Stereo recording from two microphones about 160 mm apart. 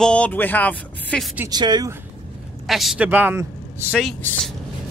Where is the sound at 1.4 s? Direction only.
25° right (ahead or behind).